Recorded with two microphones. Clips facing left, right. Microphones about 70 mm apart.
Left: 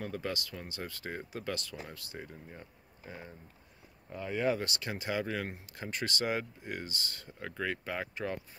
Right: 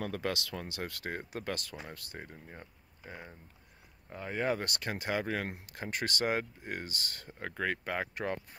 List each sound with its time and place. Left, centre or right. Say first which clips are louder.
0.0 s speech: right 2 dB; right
2.5 s speech: even; right